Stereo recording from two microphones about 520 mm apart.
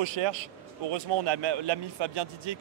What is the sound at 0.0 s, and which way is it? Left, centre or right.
Speech, right.